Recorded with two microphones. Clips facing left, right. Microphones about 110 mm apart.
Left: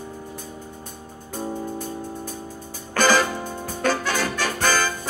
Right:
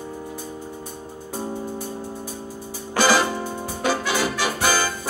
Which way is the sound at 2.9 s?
10° right (ahead or behind).